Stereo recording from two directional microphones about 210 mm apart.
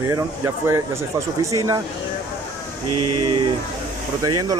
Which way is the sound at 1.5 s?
15° right (ahead or behind).